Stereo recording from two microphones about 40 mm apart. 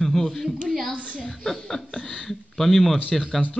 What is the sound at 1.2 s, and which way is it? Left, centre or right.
Speech, centre.